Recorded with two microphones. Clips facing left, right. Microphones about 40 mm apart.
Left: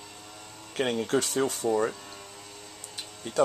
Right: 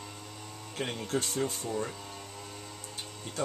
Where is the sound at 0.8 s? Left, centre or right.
Left.